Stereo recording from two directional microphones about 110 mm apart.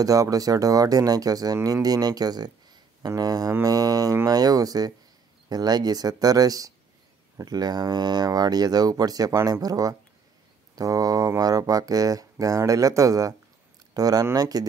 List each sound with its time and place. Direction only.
0.0 s speech: 30° right (ahead or behind)